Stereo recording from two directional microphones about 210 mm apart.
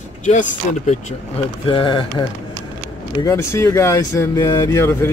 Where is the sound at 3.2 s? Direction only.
15° left (ahead or behind).